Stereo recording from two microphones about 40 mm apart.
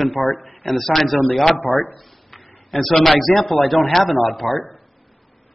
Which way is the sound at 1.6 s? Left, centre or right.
Left.